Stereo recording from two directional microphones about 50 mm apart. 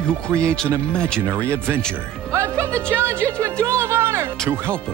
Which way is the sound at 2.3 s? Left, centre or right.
Right.